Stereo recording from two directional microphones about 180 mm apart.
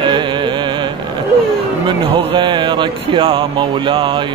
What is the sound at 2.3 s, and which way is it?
Mantra, 25° right (ahead or behind).